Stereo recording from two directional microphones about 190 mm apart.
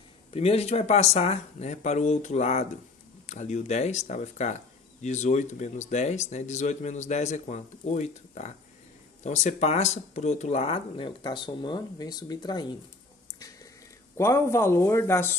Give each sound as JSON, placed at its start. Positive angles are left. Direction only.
{"t": 0.3, "sound": "speech", "side_deg": 30}
{"t": 13.3, "sound": "a sound", "side_deg": 20}
{"t": 14.1, "sound": "speech", "side_deg": 15}